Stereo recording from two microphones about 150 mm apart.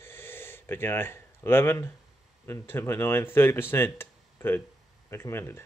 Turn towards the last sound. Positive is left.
turn(degrees=15)  # may be behind; listen again after turning